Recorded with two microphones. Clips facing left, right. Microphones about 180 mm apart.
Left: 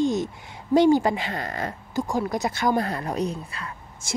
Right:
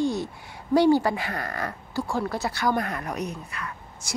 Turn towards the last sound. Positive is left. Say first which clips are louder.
# left 3 dB
turn(degrees=30)  # may be behind; listen again after turning